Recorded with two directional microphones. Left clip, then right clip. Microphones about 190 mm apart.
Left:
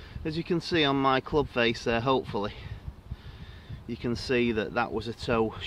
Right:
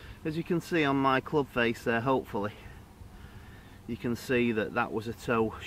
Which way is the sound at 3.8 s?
25° left (ahead or behind).